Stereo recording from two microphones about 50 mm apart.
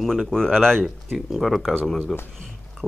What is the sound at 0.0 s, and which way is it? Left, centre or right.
Speech, centre.